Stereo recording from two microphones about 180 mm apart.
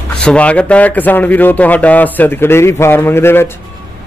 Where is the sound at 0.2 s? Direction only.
5° left (ahead or behind).